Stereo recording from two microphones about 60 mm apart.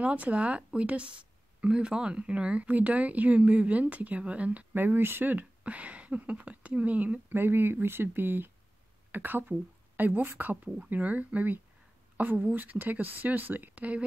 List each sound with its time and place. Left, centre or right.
0.0 s speech: right
4.7 s speech: right